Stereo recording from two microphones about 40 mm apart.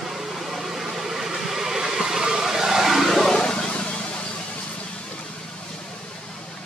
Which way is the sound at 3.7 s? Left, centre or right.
Left.